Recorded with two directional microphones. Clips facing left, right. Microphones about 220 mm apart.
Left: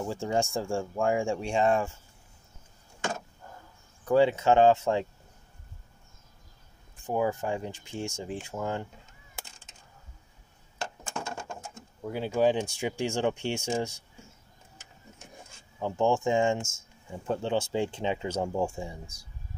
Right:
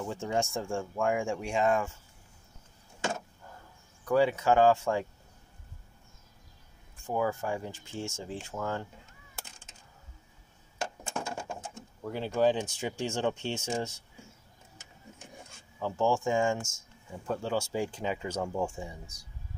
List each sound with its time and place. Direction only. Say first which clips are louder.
0.0 s speech: left 3 dB; 30° left (ahead or behind)
4.0 s speech: left 3 dB; 25° left (ahead or behind)
7.0 s speech: left 2 dB; 20° left (ahead or behind)
11.2 s pigeon: right 1 dB; 10° right (ahead or behind)
12.0 s speech: left 2 dB; 10° left (ahead or behind)
15.8 s speech: left 2 dB; 20° left (ahead or behind)